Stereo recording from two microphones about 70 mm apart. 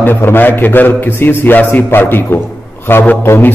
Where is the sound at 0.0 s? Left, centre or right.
Left.